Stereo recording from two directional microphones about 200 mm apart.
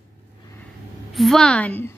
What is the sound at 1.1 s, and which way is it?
Speech, centre (ahead or behind).